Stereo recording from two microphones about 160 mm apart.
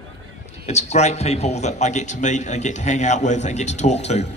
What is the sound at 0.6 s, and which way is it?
A man's voice, 45° left (ahead or behind).